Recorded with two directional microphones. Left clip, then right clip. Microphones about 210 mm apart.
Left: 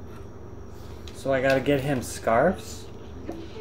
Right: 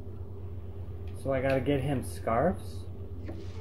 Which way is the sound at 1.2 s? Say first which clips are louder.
Left 6 dB; 5° left (ahead or behind).